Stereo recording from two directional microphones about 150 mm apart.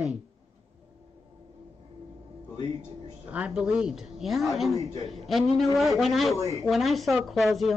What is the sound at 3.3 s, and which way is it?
Speech, 10° right (ahead or behind).